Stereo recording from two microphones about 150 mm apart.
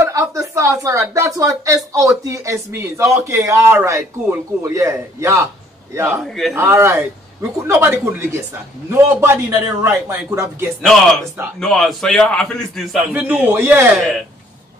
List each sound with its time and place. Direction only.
0.0 s speech: 20° right (ahead or behind)
6.2 s a man's voice: centre (ahead or behind)
6.5 s speech: 20° right (ahead or behind)
10.9 s a man's voice: centre (ahead or behind)
13.1 s speech: 10° right (ahead or behind)